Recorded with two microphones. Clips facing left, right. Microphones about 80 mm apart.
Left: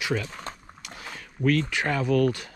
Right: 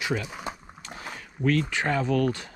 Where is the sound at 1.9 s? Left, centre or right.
Right.